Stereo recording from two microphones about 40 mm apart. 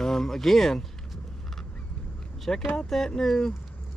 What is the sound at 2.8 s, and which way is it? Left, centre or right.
Speech, centre.